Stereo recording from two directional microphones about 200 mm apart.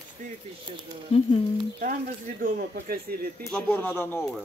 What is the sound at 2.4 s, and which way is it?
Speech, 50° right (ahead or behind).